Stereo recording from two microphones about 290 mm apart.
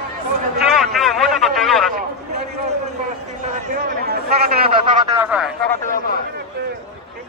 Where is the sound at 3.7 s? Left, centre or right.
Right.